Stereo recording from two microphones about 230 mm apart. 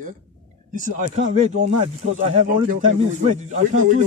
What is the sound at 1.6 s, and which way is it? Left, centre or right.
Speech, right.